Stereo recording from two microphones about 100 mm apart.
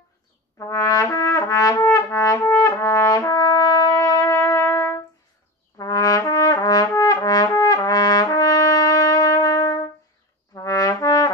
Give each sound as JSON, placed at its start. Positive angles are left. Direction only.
{"t": 0.6, "sound": "trumpet", "side_deg": 35}
{"t": 10.5, "sound": "trombone", "side_deg": 35}